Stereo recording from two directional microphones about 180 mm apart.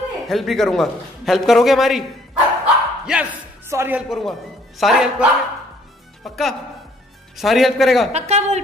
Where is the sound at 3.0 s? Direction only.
5° right (ahead or behind).